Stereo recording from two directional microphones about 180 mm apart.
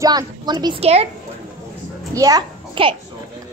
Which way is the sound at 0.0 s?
20° right (ahead or behind).